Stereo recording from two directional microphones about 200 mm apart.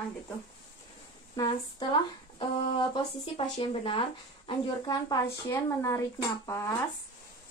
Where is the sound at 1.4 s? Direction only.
25° left (ahead or behind).